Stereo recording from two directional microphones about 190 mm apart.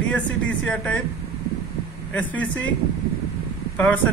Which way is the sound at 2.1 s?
10° left (ahead or behind).